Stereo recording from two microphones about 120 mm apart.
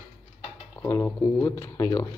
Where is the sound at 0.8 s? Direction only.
25° left (ahead or behind).